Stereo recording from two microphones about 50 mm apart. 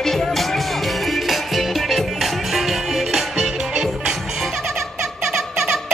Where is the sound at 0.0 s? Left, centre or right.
Centre.